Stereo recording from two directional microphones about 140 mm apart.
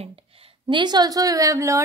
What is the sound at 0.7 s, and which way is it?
Speech, 30° right (ahead or behind).